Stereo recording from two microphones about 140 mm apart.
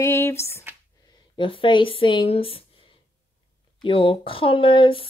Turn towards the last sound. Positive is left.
turn(degrees=40)  # may be behind; listen again after turning